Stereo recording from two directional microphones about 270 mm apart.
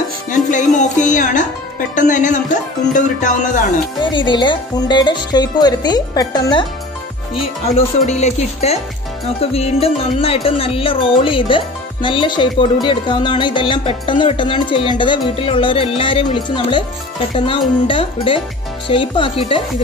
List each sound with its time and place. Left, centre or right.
0.3 s music: left
2.0 s speech: left
4.0 s music: centre
7.6 s speech: left
12.8 s music: centre
17.5 s speech: centre